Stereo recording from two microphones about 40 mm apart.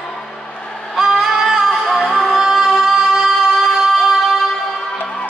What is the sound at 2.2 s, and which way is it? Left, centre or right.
Music, centre.